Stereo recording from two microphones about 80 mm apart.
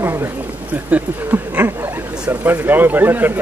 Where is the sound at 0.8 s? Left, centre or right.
Centre.